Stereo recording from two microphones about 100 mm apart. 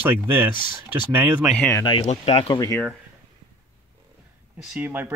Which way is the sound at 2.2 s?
80° left.